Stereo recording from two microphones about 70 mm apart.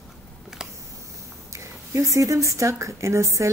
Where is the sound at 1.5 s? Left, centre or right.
Right.